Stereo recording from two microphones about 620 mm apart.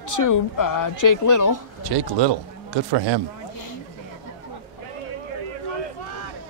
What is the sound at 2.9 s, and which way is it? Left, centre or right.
Speech, right.